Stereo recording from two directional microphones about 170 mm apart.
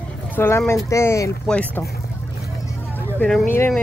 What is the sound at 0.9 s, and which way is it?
Speech, 15° left (ahead or behind).